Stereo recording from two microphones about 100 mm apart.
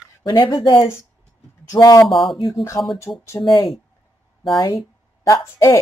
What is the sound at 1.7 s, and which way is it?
Speech, 35° left (ahead or behind).